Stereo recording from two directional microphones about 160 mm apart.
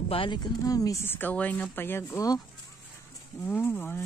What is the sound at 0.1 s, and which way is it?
Speech, 30° left (ahead or behind).